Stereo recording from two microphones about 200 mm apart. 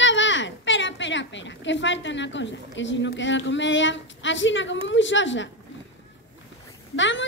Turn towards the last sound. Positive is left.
turn(degrees=65)  # may be behind; listen again after turning